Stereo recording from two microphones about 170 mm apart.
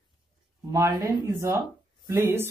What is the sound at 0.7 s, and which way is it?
Speech, 20° right (ahead or behind).